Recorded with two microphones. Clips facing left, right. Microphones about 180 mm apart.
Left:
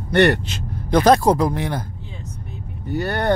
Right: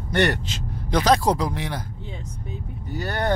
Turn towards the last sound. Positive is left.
turn(degrees=60)  # may be behind; listen again after turning